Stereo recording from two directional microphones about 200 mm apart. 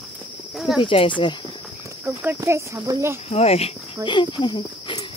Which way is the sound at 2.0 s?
10° right (ahead or behind).